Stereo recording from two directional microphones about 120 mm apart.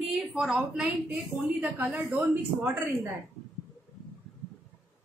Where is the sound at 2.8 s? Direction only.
20° right (ahead or behind).